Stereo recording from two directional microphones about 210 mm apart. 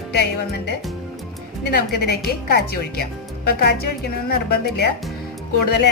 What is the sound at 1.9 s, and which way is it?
A woman's voice, 50° left (ahead or behind).